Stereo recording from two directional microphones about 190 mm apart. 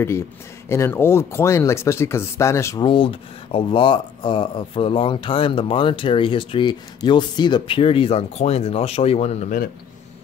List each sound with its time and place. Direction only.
0.7 s speech: 15° left (ahead or behind)
2.9 s speech: 30° left (ahead or behind)